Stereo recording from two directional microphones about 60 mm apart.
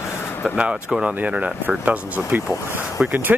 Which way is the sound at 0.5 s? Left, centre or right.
Centre.